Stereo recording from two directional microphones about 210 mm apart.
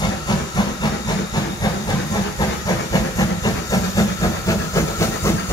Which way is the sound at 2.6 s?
15° left (ahead or behind).